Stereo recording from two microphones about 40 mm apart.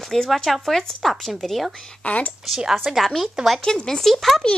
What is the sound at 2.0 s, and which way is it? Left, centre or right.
Speech, left.